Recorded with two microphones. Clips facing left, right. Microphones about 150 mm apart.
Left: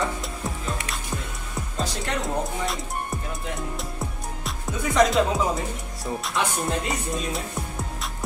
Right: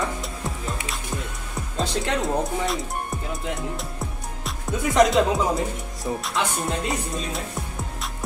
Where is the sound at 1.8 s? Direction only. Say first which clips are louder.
Right 4 dB; 20° right (ahead or behind).